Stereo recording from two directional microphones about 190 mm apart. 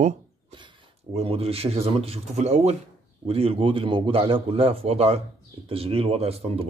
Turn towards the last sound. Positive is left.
turn(degrees=-30)  # may be behind; listen again after turning